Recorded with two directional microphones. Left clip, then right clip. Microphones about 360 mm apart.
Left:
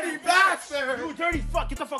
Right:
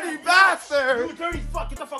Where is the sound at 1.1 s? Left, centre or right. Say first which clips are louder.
Left 2 dB; left.